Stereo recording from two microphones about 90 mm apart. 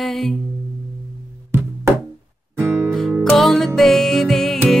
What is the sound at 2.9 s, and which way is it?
Music, 5° left (ahead or behind).